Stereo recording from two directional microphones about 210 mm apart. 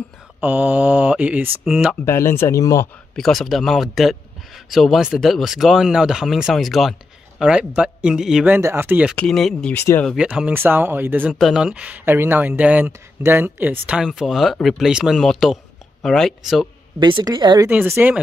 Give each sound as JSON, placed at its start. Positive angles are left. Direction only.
{"t": 0.4, "sound": "speech", "side_deg": -10}
{"t": 2.0, "sound": "speech", "side_deg": 10}
{"t": 3.2, "sound": "speech", "side_deg": 0}
{"t": 9.1, "sound": "speech", "side_deg": 5}
{"t": 10.1, "sound": "speech", "side_deg": -5}
{"t": 17.0, "sound": "a woman's voice", "side_deg": -20}